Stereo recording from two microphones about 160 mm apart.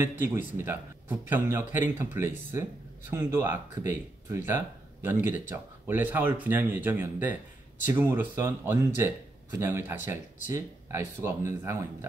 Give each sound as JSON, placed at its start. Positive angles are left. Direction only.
{"t": 0.0, "sound": "speech", "side_deg": -15}